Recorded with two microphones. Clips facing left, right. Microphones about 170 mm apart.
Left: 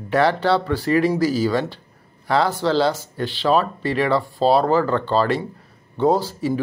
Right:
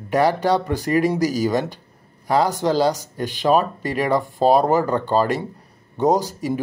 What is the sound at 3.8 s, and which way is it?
Speech, 40° right (ahead or behind).